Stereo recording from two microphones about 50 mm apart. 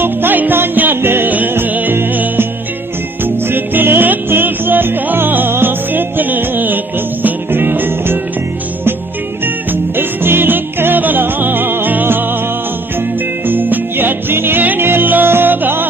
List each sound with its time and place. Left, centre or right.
0.0 s music: right
3.3 s music: right
9.7 s music: right
13.5 s music: right